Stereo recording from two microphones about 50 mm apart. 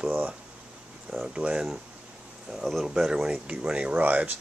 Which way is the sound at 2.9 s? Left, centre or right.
Centre.